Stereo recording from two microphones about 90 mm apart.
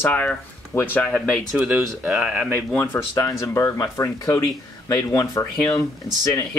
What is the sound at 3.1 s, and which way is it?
Speech, 35° left (ahead or behind).